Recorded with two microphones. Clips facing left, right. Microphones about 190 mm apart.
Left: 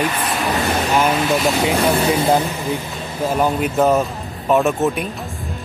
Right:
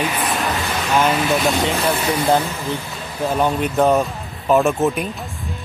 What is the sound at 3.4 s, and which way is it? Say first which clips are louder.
Speech: even; 5° left (ahead or behind).